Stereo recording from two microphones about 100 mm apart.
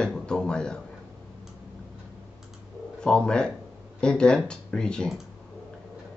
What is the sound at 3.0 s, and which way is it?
Speech, 10° left (ahead or behind).